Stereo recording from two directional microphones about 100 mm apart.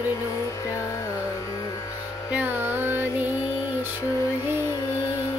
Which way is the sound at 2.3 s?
15° right (ahead or behind).